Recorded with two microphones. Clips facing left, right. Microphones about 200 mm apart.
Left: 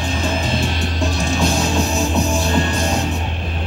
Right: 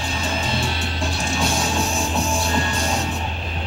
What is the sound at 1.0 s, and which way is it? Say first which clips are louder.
Music: left 5 dB; 35° left (ahead or behind).